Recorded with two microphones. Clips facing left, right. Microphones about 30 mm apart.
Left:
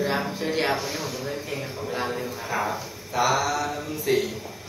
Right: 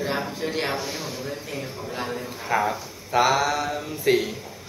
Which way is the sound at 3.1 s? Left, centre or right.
Right.